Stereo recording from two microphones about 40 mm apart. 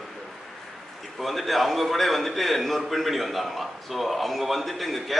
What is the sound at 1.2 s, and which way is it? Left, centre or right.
A man's voice, centre.